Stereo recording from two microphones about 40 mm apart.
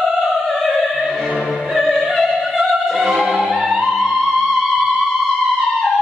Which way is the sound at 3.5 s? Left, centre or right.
Centre.